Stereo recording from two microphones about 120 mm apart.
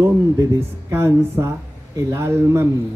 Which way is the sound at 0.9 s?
20° right (ahead or behind).